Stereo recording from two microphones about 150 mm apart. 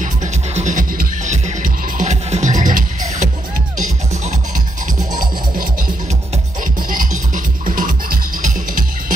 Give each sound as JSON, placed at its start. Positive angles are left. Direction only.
{"t": 0.0, "sound": "music", "side_deg": -55}
{"t": 6.9, "sound": "music", "side_deg": -65}